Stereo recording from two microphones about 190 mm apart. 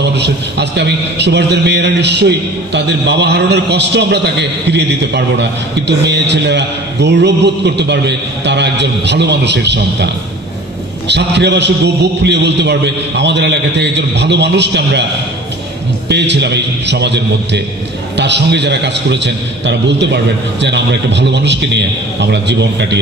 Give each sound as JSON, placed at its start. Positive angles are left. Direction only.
{"t": 0.0, "sound": "a man's voice", "side_deg": -60}
{"t": 16.1, "sound": "a man's voice", "side_deg": -65}